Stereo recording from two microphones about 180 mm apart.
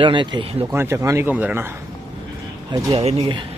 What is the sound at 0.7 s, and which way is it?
Speech, 15° right (ahead or behind).